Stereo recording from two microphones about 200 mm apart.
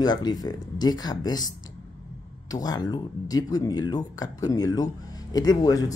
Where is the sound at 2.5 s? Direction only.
20° left (ahead or behind).